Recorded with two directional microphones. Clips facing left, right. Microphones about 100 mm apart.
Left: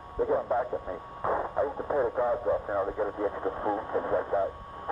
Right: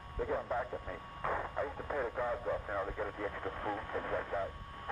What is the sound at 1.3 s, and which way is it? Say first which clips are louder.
Speech: left 9 dB; 30° left (ahead or behind).